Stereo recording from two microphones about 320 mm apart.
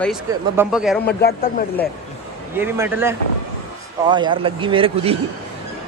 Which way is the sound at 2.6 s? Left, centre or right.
Centre.